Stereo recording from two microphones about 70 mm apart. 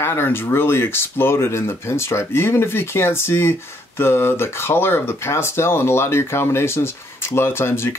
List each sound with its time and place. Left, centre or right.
0.0 s speech: left